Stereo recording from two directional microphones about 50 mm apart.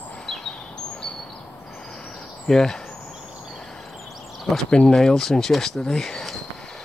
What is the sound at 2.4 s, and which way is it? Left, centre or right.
Speech, centre.